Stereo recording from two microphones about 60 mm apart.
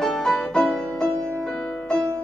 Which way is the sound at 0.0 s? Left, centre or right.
Centre.